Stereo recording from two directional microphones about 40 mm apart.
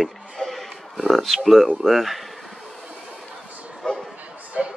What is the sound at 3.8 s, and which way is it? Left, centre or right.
Bow-wow, left.